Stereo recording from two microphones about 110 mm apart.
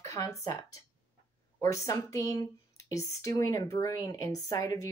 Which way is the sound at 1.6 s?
30° left (ahead or behind).